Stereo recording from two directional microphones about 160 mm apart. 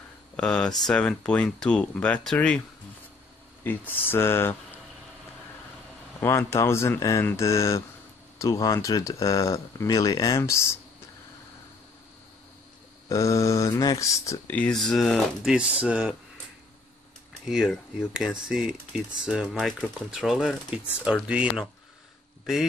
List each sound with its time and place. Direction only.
0.4 s speech: 5° left (ahead or behind)
3.6 s speech: 10° left (ahead or behind)
6.2 s speech: 15° left (ahead or behind)
13.1 s speech: 20° left (ahead or behind); by 16.2 s 5° right (ahead or behind)
17.5 s speech: 5° right (ahead or behind)